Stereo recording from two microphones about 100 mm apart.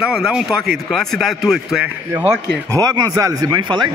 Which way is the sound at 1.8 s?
20° right (ahead or behind).